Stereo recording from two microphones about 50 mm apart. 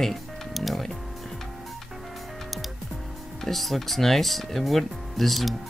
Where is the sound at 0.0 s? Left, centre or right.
Centre.